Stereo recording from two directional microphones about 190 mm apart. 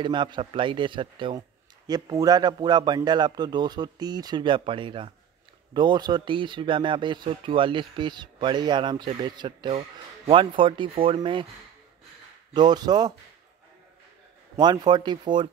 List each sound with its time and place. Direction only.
0.0 s speech: 25° right (ahead or behind)
12.5 s speech: 20° right (ahead or behind)
14.6 s speech: 20° right (ahead or behind)